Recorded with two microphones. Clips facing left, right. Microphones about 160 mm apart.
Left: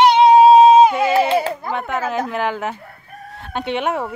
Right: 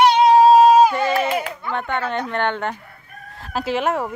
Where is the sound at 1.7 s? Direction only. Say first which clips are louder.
Right 1 dB; centre (ahead or behind).